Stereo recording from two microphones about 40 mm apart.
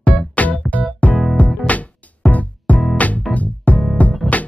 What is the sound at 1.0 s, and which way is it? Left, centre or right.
Music, left.